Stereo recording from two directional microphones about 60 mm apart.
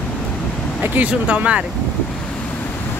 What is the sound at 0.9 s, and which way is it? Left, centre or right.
Speech, right.